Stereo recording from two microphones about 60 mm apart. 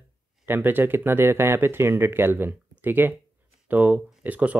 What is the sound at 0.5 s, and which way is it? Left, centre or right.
Speech, right.